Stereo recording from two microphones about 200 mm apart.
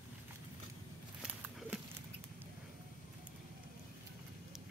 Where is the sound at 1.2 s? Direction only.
5° right (ahead or behind).